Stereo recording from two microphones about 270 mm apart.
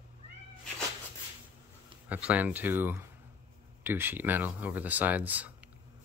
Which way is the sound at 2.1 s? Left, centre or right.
Centre.